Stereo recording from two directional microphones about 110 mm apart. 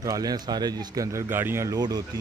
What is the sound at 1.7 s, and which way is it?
Speech, 35° right (ahead or behind).